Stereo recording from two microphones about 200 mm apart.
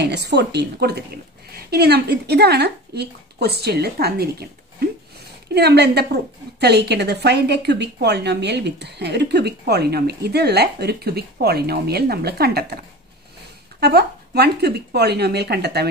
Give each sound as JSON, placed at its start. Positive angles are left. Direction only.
{"t": 0.0, "sound": "a woman's voice", "side_deg": -55}